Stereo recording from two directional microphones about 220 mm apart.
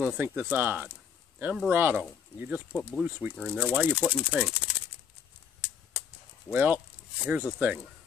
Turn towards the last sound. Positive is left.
turn(degrees=-5)  # may be behind; listen again after turning